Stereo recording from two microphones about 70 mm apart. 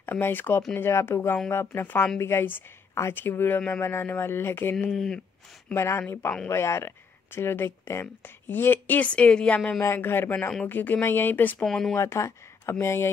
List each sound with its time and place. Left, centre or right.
0.0 s speech: left
2.9 s a sound: left
3.2 s speech: left
4.9 s speech: centre
5.7 s speech: left; by 9.8 s centre
9.8 s speech: left
11.6 s speech: centre
12.0 s speech: left